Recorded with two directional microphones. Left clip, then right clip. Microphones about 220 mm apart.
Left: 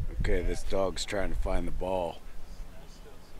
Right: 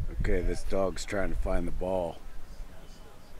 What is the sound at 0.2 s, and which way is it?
Speech, 15° right (ahead or behind).